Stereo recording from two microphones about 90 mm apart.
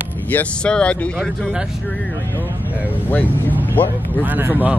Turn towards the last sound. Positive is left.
turn(degrees=-20)  # may be behind; listen again after turning